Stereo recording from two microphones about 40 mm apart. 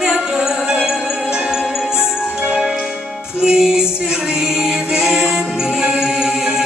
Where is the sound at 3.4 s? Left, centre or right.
Centre.